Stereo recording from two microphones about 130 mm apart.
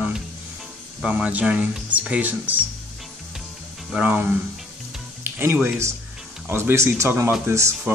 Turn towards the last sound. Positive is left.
turn(degrees=-20)  # may be behind; listen again after turning